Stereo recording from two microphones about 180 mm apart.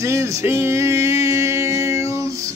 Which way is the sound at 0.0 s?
15° right (ahead or behind).